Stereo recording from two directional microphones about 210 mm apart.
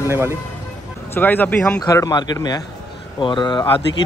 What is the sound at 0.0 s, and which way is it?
Speech, 10° right (ahead or behind).